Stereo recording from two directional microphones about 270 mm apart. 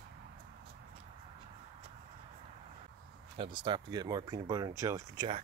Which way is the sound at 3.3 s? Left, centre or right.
Centre.